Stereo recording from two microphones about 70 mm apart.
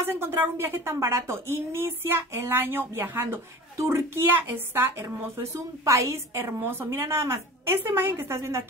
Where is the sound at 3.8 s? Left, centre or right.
Right.